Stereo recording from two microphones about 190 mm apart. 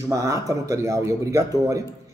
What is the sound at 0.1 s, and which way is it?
Speech, 15° right (ahead or behind).